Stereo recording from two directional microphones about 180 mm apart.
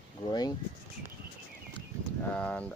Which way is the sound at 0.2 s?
25° left (ahead or behind).